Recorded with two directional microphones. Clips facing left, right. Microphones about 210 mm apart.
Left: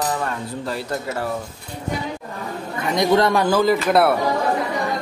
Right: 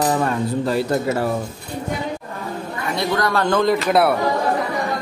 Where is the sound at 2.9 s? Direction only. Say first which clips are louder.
Left 4 dB; 20° left (ahead or behind).